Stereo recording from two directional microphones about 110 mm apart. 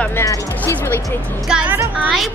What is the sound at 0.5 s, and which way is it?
Speech, 20° left (ahead or behind).